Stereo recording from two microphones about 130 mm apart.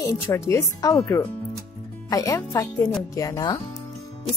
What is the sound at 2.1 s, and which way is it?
Speech, 25° left (ahead or behind).